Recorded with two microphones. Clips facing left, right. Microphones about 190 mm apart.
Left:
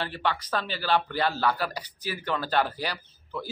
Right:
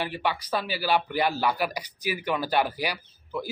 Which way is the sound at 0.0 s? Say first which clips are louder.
Right 1 dB; 10° right (ahead or behind).